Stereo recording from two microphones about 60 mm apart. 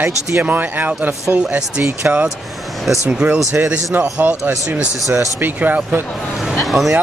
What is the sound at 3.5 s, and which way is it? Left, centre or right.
Speech, right.